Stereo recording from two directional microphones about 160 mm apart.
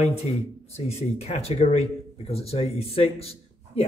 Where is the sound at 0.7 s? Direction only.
40° left (ahead or behind).